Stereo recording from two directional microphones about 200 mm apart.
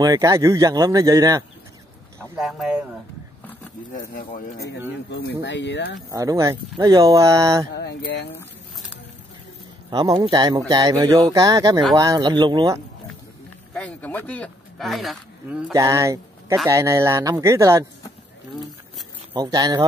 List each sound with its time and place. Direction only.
0.0 s speech: 15° right (ahead or behind)
2.1 s speech: centre (ahead or behind)
3.9 s speech: 45° left (ahead or behind)
6.1 s speech: 15° right (ahead or behind)
7.7 s speech: 55° left (ahead or behind)
9.8 s speech: 20° right (ahead or behind)
13.7 s speech: 5° left (ahead or behind)
15.7 s speech: 15° right (ahead or behind)
19.3 s speech: 20° right (ahead or behind)